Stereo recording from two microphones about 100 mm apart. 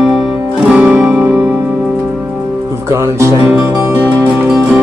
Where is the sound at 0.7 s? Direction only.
10° right (ahead or behind).